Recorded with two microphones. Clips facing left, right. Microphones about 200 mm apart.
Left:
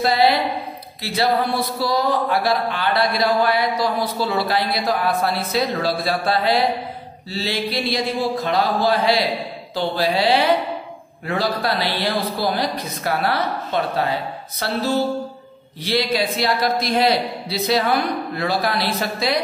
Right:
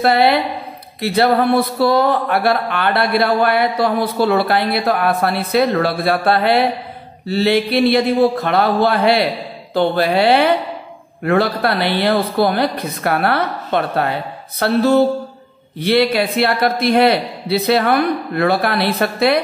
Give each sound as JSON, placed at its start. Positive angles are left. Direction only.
{"t": 0.0, "sound": "speech", "side_deg": -60}
{"t": 0.3, "sound": "speech", "side_deg": 0}
{"t": 1.0, "sound": "speech", "side_deg": -60}
{"t": 15.8, "sound": "speech", "side_deg": -60}